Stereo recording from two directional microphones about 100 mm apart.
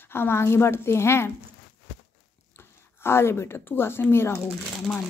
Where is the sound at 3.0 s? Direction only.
25° left (ahead or behind).